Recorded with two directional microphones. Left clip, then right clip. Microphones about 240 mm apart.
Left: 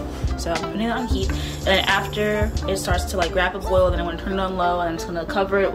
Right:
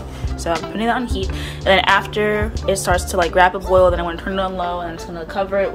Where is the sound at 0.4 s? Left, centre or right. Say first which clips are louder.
Right 4 dB; centre.